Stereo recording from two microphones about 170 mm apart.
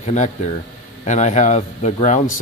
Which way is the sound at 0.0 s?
45° left (ahead or behind).